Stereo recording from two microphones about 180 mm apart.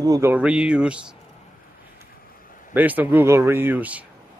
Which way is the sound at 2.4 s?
50° left (ahead or behind).